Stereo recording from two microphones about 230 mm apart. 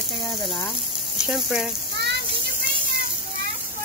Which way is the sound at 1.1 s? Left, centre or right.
Centre.